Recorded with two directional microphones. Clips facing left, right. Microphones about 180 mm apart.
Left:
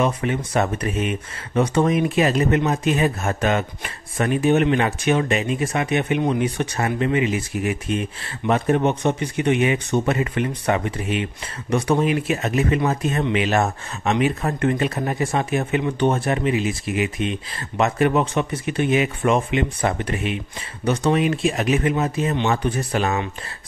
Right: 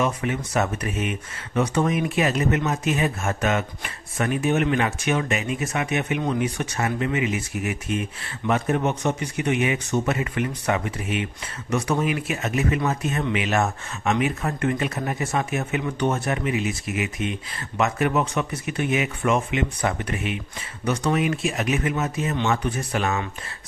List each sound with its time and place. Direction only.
0.0 s speech: 30° left (ahead or behind)